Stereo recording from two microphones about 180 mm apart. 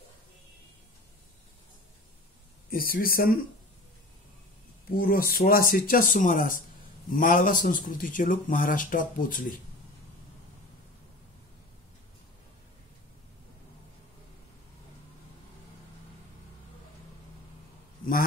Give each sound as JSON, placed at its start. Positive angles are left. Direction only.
{"t": 2.7, "sound": "speech", "side_deg": 55}
{"t": 4.8, "sound": "speech", "side_deg": 55}
{"t": 18.0, "sound": "a sound", "side_deg": 50}